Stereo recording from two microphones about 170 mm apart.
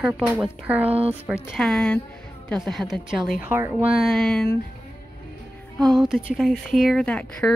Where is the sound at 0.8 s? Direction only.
35° right (ahead or behind).